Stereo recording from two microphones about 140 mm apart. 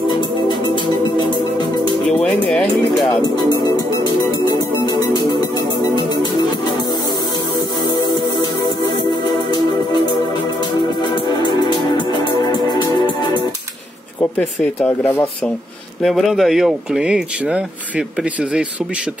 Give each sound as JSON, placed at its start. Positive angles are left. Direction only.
{"t": 2.0, "sound": "music", "side_deg": 5}
{"t": 3.3, "sound": "music", "side_deg": 30}
{"t": 11.0, "sound": "music", "side_deg": 30}
{"t": 14.6, "sound": "speech", "side_deg": 15}
{"t": 16.0, "sound": "speech", "side_deg": 0}